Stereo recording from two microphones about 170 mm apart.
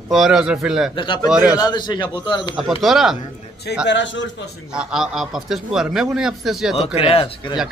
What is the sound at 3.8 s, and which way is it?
Speech, 90° left.